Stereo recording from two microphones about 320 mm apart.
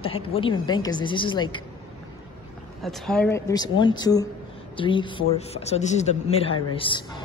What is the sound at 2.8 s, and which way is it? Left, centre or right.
Speech, centre.